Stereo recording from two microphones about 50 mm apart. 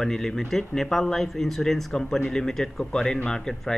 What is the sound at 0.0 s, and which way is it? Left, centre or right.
Speech, centre.